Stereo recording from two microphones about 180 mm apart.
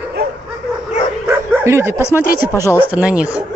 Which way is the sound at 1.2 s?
15° right (ahead or behind).